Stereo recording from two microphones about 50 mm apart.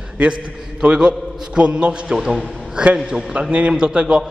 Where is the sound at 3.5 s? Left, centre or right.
Right.